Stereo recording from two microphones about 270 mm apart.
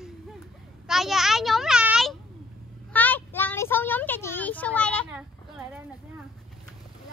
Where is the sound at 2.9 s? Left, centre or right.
Centre.